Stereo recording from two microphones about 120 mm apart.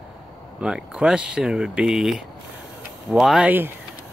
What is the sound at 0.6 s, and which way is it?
Speech, 5° right (ahead or behind).